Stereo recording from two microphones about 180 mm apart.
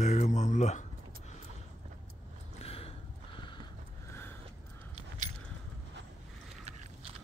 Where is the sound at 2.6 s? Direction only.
35° left (ahead or behind).